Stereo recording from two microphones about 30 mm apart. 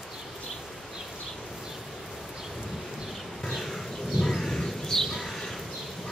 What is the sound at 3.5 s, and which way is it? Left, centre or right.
Bee, centre.